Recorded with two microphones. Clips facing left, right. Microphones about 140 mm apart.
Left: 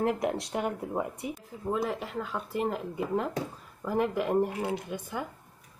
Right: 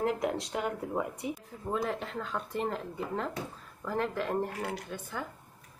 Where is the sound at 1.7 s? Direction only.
5° left (ahead or behind).